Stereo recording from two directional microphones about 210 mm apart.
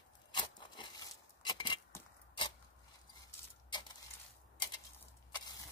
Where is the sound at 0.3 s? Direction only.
20° left (ahead or behind).